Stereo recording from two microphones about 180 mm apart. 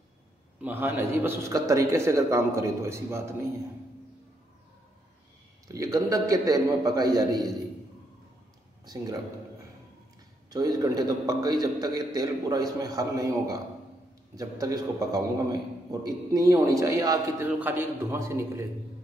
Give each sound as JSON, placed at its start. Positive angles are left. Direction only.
{"t": 0.6, "sound": "a man's voice", "side_deg": -10}
{"t": 5.7, "sound": "a man's voice", "side_deg": -20}
{"t": 8.8, "sound": "a man's voice", "side_deg": -20}
{"t": 10.5, "sound": "a man's voice", "side_deg": -20}